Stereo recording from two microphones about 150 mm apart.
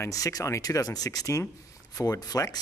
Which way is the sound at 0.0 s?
25° left (ahead or behind).